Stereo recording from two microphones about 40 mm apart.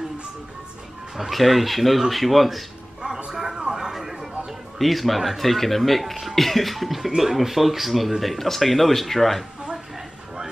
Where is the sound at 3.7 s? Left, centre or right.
Centre.